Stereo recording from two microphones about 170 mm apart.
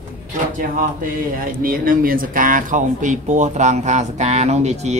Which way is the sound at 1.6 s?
55° right (ahead or behind).